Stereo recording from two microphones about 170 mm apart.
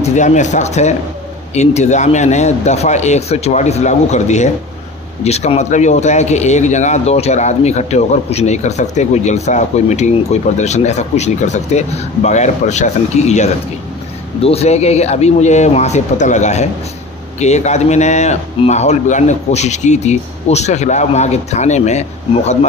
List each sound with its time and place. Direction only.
0.0 s speech: 45° left (ahead or behind)